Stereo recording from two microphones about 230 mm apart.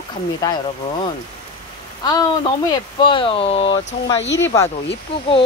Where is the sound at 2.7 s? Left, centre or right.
Left.